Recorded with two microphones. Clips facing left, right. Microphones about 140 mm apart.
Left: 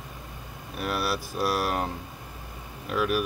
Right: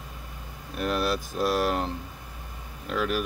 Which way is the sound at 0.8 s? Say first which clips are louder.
Right 2 dB; 5° left (ahead or behind).